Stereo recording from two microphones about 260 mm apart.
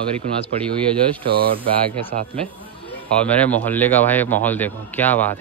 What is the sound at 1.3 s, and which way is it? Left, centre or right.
Speech, right.